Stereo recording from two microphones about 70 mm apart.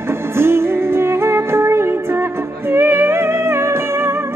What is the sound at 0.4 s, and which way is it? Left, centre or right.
Music, right.